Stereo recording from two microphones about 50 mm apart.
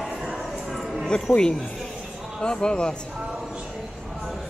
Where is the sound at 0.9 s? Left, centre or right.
Centre.